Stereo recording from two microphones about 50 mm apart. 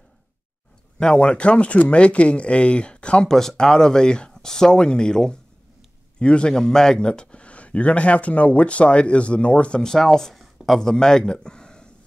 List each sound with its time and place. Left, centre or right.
0.9 s speech: centre
3.3 s speech: centre
10.4 s a sound: centre
10.8 s speech: centre